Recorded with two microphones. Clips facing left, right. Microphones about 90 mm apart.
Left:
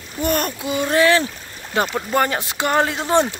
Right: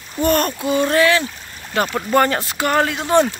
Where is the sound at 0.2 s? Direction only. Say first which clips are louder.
Right 4 dB; 10° left (ahead or behind).